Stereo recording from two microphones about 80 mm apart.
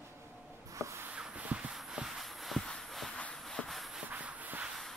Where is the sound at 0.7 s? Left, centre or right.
Right.